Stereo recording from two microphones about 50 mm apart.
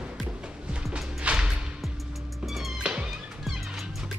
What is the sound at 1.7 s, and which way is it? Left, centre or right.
Music, centre.